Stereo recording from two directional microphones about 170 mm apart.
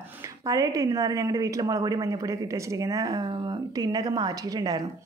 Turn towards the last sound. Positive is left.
turn(degrees=-20)  # may be behind; listen again after turning